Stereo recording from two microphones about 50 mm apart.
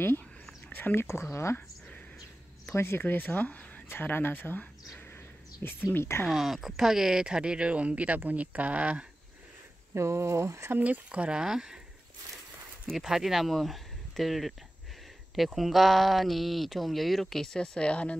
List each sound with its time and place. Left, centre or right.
0.7 s a sound: left
0.9 s speech: left
2.7 s speech: left
3.0 s speech: left
3.9 s speech: left
5.1 s a sound: left
5.9 s speech: left
6.2 s speech: centre; by 9.0 s right
9.9 s speech: right
10.8 s speech: right; by 11.8 s centre
12.9 s speech: centre
17.6 s speech: centre